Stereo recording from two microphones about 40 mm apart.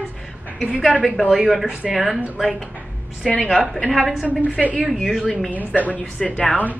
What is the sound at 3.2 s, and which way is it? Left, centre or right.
Speech, centre.